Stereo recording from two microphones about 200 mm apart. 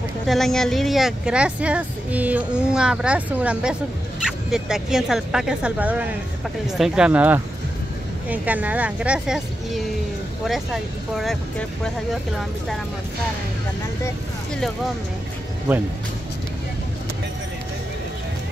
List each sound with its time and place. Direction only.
0.3 s a woman's voice: centre (ahead or behind)